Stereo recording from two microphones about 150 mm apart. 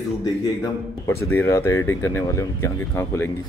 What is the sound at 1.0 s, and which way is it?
Speech, 15° left (ahead or behind).